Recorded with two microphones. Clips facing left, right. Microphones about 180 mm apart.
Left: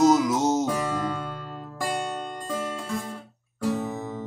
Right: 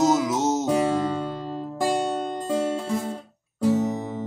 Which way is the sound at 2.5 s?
20° right (ahead or behind).